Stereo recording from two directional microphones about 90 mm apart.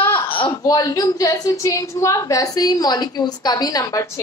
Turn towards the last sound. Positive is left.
turn(degrees=35)  # may be behind; listen again after turning